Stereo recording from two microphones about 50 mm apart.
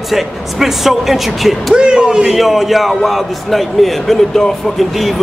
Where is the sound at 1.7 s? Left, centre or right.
Centre.